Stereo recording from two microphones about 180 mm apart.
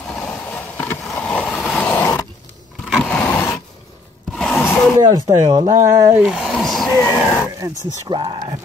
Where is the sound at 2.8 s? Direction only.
Centre (ahead or behind).